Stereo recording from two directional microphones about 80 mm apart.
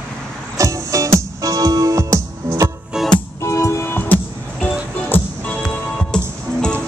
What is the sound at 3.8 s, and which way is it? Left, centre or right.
Music, left.